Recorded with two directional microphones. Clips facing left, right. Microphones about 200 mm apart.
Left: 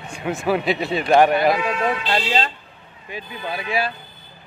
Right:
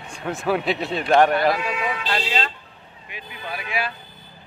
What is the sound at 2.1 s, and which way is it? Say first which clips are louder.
Speech: left 3 dB; 30° left (ahead or behind).